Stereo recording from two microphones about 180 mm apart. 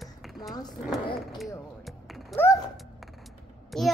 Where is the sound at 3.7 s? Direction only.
Centre (ahead or behind).